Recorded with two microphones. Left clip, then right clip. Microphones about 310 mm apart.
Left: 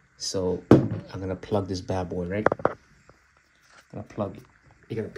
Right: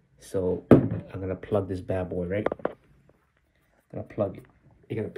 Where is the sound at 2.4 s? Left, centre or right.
Right.